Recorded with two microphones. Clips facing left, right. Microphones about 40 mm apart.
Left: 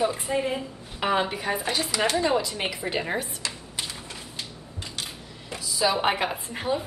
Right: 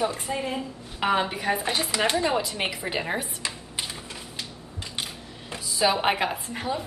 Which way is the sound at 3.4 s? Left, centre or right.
Centre.